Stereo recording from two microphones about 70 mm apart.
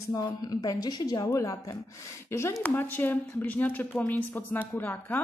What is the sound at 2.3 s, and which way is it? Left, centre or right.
Speech, left.